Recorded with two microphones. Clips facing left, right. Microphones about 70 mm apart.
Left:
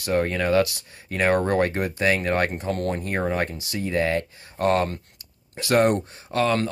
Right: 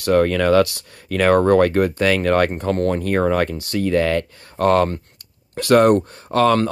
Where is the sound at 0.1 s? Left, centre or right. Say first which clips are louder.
Right 6 dB; right.